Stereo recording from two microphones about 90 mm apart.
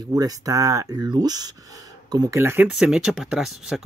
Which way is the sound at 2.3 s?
20° right (ahead or behind).